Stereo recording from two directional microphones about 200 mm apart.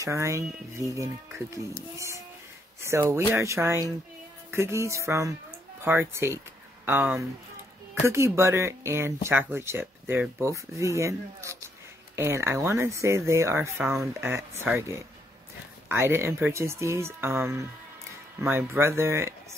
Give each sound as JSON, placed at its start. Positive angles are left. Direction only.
{"t": 0.0, "sound": "speech", "side_deg": -15}